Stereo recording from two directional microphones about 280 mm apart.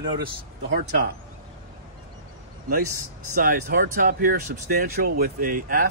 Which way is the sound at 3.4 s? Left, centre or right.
Right.